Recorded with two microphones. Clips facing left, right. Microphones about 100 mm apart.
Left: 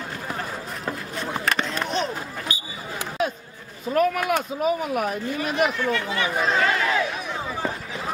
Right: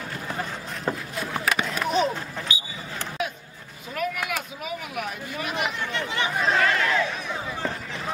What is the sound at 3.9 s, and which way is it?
Speech, 35° left (ahead or behind).